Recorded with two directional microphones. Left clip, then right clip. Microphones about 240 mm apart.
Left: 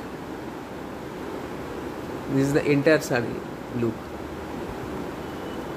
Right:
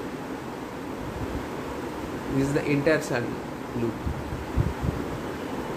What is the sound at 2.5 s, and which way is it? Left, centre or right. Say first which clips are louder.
Speech: left 4 dB; left.